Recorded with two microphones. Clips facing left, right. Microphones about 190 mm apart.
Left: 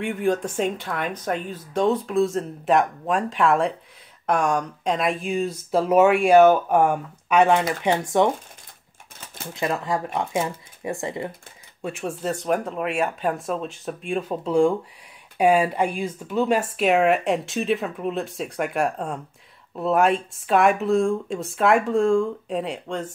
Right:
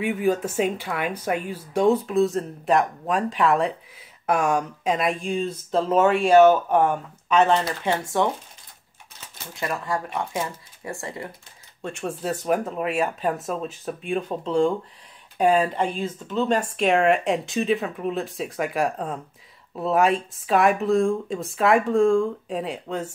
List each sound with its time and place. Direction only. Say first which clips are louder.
0.0 s speech: right 1 dB; 5° right (ahead or behind); by 8.3 s 20° left (ahead or behind)
9.5 s speech: left 3 dB; 20° left (ahead or behind)
11.8 s speech: left 1 dB; 5° left (ahead or behind)